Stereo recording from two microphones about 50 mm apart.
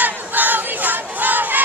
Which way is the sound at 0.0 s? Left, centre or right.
Right.